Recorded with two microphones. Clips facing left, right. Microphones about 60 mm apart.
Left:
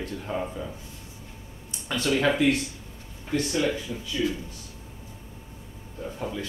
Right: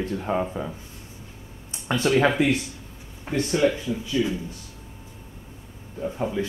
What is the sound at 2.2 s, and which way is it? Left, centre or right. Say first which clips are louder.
Speech: right 1 dB; right.